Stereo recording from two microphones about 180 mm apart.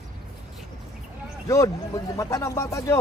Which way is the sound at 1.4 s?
20° left (ahead or behind).